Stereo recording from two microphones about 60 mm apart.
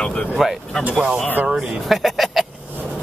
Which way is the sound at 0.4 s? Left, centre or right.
Centre.